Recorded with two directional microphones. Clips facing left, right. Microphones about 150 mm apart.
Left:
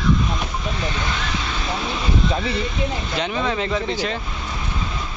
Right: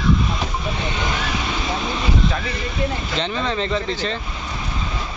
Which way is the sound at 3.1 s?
10° left (ahead or behind).